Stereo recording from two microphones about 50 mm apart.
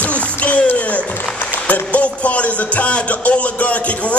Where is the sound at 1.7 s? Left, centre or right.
Left.